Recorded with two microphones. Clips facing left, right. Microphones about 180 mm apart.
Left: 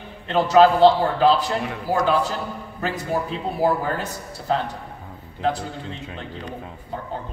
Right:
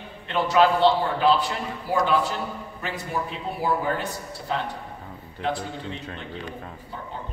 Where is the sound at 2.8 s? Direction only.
40° left (ahead or behind).